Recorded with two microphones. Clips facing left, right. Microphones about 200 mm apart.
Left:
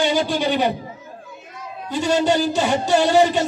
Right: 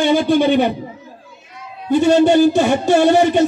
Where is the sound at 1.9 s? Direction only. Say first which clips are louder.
Right 7 dB; 55° right (ahead or behind).